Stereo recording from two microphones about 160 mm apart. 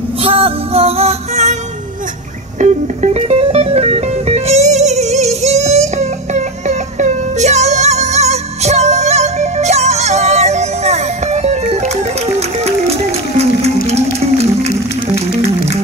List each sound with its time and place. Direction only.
0.2 s music: 35° right (ahead or behind)
2.6 s music: 45° right (ahead or behind)
13.4 s music: 40° right (ahead or behind)